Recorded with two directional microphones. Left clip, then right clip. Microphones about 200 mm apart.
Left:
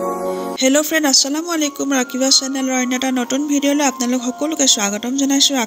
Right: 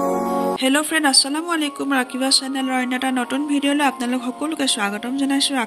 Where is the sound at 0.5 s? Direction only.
25° left (ahead or behind).